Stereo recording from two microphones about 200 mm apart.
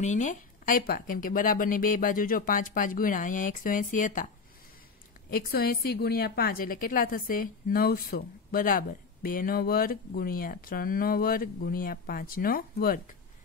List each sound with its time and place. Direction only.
0.0 s a woman's voice: 40° left (ahead or behind)
5.3 s a woman's voice: 50° left (ahead or behind)